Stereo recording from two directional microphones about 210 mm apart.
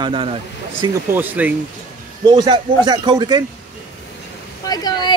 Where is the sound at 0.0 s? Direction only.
25° right (ahead or behind).